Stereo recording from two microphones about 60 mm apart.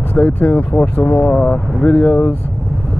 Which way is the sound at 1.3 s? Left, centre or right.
Centre.